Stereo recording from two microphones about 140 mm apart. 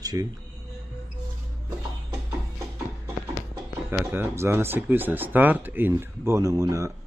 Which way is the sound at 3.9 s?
15° right (ahead or behind).